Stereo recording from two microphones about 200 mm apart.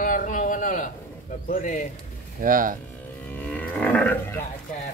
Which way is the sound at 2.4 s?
45° right (ahead or behind).